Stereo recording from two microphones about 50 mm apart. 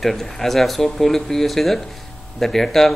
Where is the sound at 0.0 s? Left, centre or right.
Centre.